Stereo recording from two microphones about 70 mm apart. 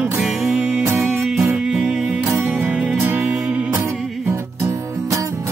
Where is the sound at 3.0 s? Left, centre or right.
Right.